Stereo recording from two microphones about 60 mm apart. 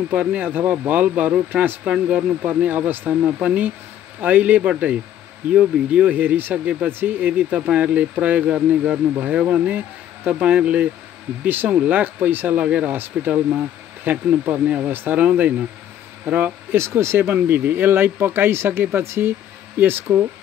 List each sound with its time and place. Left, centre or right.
0.1 s speech: right
1.9 s speech: centre; by 6.5 s right
6.5 s speech: right
6.9 s speech: right
11.4 s speech: right
12.5 s speech: right
12.9 s speech: right
14.5 s speech: right
16.7 s speech: right
17.3 s speech: right